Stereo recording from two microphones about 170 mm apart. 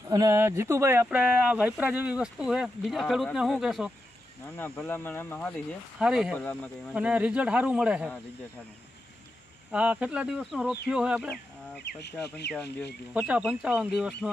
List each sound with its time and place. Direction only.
0.1 s speech: 20° right (ahead or behind); by 3.9 s centre (ahead or behind)
4.6 s speech: 15° left (ahead or behind)
5.9 s speech: 5° right (ahead or behind)
6.3 s speech: 10° left (ahead or behind)
6.9 s speech: 5° right (ahead or behind)
9.7 s speech: 5° right (ahead or behind)
12.0 s speech: 80° left
13.1 s speech: 5° right (ahead or behind)